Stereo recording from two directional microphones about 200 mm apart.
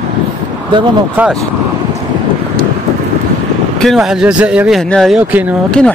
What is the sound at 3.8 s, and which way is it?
Speech, centre (ahead or behind).